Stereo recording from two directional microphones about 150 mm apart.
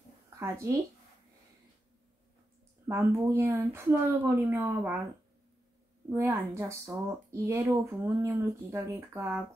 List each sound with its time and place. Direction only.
0.4 s speech: 20° right (ahead or behind)
2.9 s speech: 15° right (ahead or behind)
6.0 s speech: 15° right (ahead or behind)